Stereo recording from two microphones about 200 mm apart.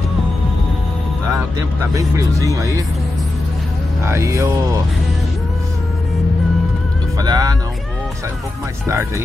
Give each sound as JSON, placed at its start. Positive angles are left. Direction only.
{"t": 1.3, "sound": "speech", "side_deg": -15}
{"t": 4.0, "sound": "speech", "side_deg": -15}
{"t": 7.2, "sound": "speech", "side_deg": -20}
{"t": 8.8, "sound": "speech", "side_deg": -15}